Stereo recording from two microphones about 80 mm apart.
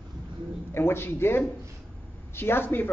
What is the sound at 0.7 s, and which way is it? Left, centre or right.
A man's voice, left.